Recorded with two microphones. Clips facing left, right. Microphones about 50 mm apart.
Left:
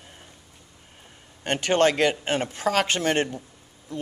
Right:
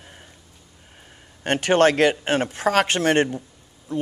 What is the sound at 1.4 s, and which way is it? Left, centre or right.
Speech, right.